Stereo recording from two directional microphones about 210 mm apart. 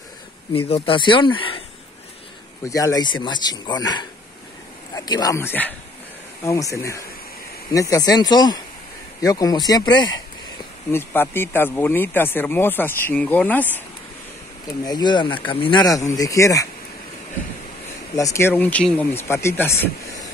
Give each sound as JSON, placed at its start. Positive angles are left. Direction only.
{"t": 0.5, "sound": "speech", "side_deg": 25}
{"t": 2.6, "sound": "speech", "side_deg": 15}
{"t": 14.9, "sound": "speech", "side_deg": 20}
{"t": 18.1, "sound": "speech", "side_deg": 15}